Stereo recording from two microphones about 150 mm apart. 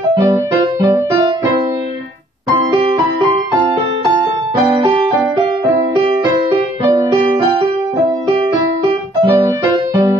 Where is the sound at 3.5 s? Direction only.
30° right (ahead or behind).